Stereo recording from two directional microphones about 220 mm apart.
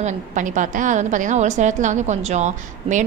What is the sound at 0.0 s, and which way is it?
A woman's voice, 35° right (ahead or behind).